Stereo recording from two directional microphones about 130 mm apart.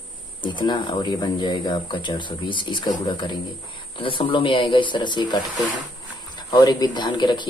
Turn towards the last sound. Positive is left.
turn(degrees=35)  # may be behind; listen again after turning